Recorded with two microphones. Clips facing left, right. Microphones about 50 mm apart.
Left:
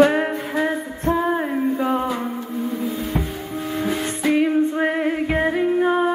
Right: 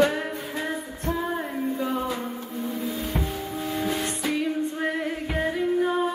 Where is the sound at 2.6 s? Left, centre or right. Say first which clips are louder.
Left 3 dB; centre.